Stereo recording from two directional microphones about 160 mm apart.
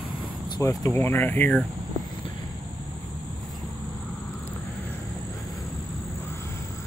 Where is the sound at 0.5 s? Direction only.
20° left (ahead or behind).